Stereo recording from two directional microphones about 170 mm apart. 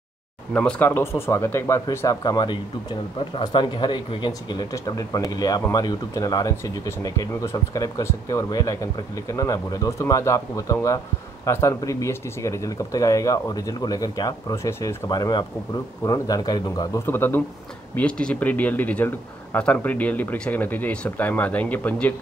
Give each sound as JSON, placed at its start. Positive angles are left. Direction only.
{"t": 0.5, "sound": "a man's voice", "side_deg": 10}